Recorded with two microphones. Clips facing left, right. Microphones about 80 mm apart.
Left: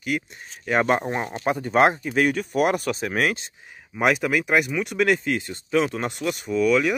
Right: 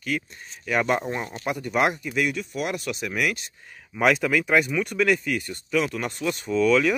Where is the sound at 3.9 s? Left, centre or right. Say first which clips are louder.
Even; centre.